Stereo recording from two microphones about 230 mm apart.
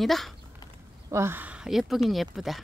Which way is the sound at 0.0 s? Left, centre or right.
Centre.